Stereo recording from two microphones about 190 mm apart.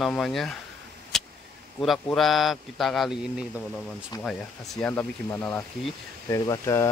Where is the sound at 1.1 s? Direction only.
Centre (ahead or behind).